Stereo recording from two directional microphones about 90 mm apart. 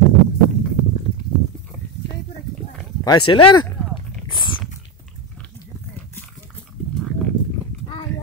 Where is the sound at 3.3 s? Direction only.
70° left (ahead or behind).